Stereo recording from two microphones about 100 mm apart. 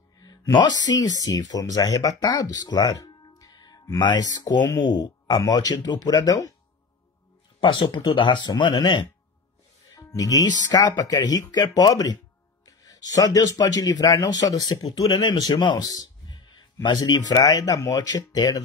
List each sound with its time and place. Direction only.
0.2 s speech: 40° left (ahead or behind)
7.6 s speech: 55° left (ahead or behind)
9.9 s speech: 35° left (ahead or behind)
15.0 s a man's voice: 50° left (ahead or behind)